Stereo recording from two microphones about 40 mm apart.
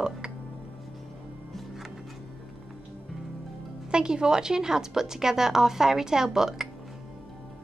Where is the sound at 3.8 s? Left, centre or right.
Right.